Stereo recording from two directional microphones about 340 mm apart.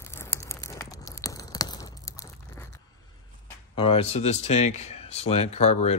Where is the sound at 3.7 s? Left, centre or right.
Centre.